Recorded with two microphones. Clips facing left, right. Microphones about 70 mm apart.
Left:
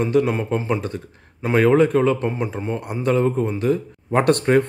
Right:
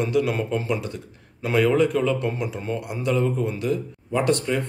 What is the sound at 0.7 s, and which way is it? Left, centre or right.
A man's voice, left.